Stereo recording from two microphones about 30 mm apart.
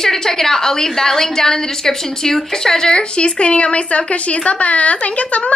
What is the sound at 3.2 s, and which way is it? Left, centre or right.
A woman's voice, left.